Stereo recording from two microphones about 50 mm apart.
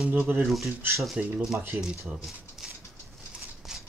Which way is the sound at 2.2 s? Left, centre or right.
Centre.